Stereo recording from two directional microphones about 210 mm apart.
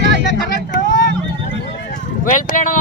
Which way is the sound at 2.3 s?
40° left (ahead or behind).